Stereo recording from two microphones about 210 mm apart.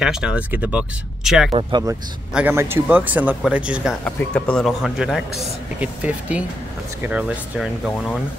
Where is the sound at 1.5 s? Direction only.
25° right (ahead or behind).